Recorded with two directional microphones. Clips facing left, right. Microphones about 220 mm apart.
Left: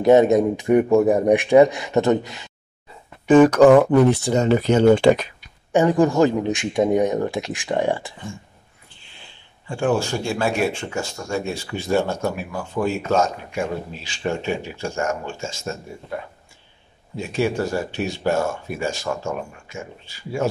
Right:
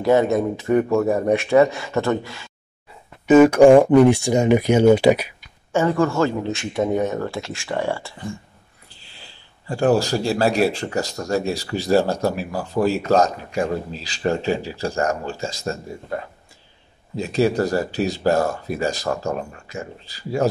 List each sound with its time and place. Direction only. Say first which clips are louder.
0.0 s speech: left 3 dB; 20° left (ahead or behind)
3.3 s speech: right 1 dB; 10° right (ahead or behind)
5.7 s speech: left 2 dB; 15° left (ahead or behind)
9.0 s speech: right 1 dB; 35° right (ahead or behind)